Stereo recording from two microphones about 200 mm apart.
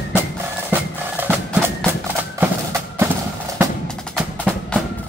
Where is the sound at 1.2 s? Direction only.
10° right (ahead or behind).